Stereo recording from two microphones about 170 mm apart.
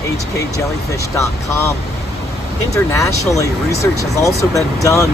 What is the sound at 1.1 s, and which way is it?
Speech, 15° left (ahead or behind).